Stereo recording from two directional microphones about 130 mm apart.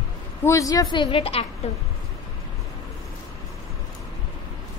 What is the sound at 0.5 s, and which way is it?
Speech, 25° left (ahead or behind).